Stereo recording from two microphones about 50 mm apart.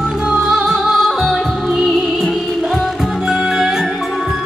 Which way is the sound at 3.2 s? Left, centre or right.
Centre.